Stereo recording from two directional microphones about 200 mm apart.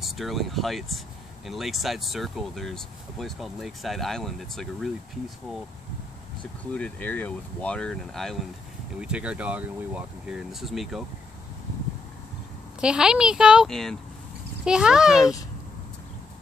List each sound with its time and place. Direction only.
0.0 s speech: centre (ahead or behind)
6.7 s speech: 5° left (ahead or behind)
12.8 s speech: 5° right (ahead or behind)
15.1 s speech: 15° left (ahead or behind)